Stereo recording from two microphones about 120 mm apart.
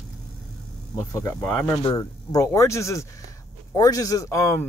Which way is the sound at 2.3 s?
25° left (ahead or behind).